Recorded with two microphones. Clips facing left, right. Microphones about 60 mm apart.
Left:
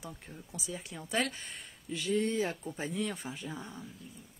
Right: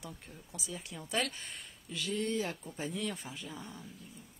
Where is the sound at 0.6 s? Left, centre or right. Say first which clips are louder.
Left 2 dB; centre.